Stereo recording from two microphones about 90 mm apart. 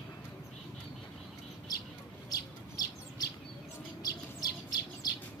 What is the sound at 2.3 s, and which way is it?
Bird, 45° left (ahead or behind).